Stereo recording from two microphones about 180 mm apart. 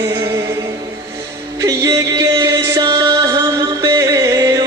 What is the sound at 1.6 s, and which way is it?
Music, 15° right (ahead or behind).